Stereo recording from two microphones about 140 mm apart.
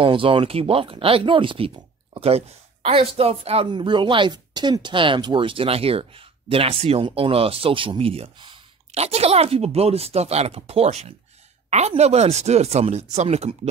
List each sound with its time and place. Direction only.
0.0 s speech: 40° right (ahead or behind)
8.9 s speech: 50° right (ahead or behind)